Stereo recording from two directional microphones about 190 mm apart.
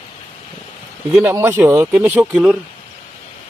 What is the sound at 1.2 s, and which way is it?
Speech, 10° right (ahead or behind).